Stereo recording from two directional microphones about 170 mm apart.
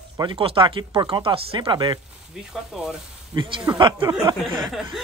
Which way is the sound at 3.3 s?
25° right (ahead or behind).